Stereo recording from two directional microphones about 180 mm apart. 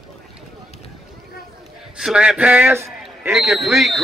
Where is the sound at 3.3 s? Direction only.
Centre (ahead or behind).